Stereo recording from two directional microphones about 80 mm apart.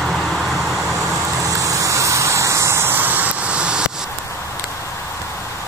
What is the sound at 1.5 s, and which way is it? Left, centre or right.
Vehicle, right.